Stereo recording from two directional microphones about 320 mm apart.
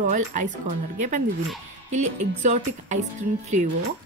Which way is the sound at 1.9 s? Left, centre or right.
Right.